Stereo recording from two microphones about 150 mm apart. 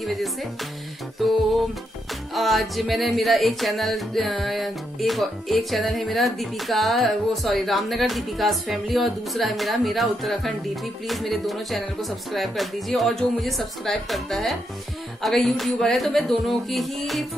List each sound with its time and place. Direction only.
0.0 s music: centre (ahead or behind)